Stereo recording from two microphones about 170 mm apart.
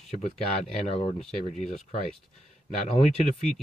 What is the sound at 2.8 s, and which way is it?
Speech, 35° left (ahead or behind).